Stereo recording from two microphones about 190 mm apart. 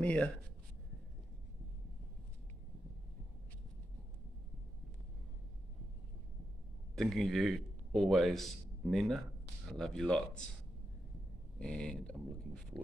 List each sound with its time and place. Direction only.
0.0 s speech: 5° left (ahead or behind)
7.0 s a man's voice: centre (ahead or behind)
11.5 s speech: 5° left (ahead or behind)